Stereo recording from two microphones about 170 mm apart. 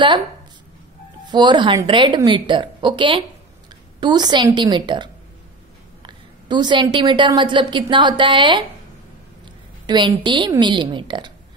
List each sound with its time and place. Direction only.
1.2 s a woman's voice: 25° right (ahead or behind)
9.8 s a woman's voice: 25° right (ahead or behind)